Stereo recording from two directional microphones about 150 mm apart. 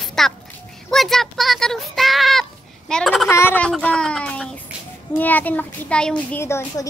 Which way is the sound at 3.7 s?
5° left (ahead or behind).